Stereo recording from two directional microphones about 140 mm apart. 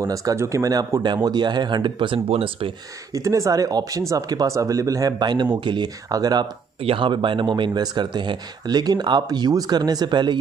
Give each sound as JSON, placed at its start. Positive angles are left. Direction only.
{"t": 0.0, "sound": "speech", "side_deg": -25}
{"t": 3.1, "sound": "speech", "side_deg": -25}
{"t": 6.8, "sound": "speech", "side_deg": -40}